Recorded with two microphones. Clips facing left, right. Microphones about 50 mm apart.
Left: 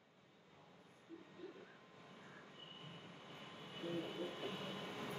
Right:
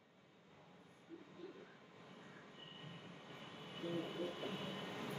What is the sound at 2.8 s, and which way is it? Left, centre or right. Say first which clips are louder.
Vehicle: right 2 dB; centre.